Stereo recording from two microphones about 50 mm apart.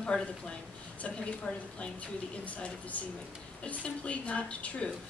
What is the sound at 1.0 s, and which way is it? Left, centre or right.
A woman's voice, left.